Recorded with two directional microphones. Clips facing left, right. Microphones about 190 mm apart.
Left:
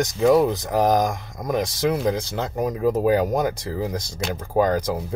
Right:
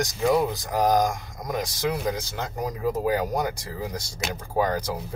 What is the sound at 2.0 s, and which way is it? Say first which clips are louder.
Speech: left 5 dB; 25° left (ahead or behind).